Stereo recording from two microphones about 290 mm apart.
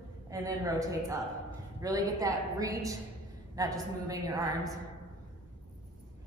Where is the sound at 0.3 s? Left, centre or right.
Centre.